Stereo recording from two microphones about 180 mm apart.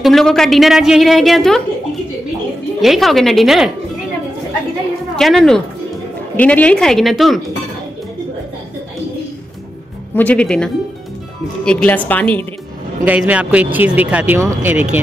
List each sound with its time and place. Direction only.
0.0 s a woman's voice: centre (ahead or behind)
2.8 s a woman's voice: centre (ahead or behind)
5.1 s a woman's voice: centre (ahead or behind)
10.1 s a woman's voice: 5° left (ahead or behind)
13.0 s speech: 10° right (ahead or behind)